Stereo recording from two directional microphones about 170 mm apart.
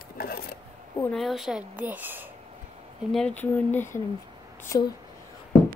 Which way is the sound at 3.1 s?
5° left (ahead or behind).